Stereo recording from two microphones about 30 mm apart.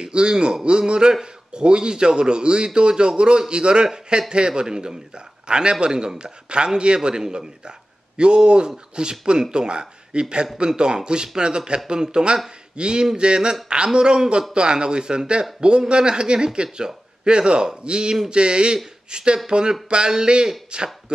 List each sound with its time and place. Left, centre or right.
0.0 s a man's voice: right